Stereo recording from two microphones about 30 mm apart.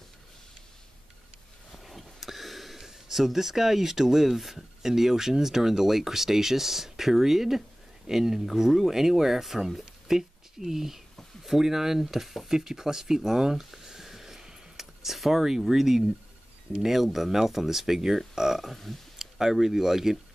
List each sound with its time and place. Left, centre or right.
1.9 s a sound: centre
4.8 s speech: centre
13.3 s a sound: centre
16.8 s speech: centre
18.7 s speech: centre
19.1 s speech: centre